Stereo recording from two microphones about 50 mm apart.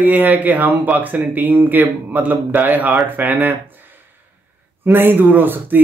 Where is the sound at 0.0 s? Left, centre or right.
Right.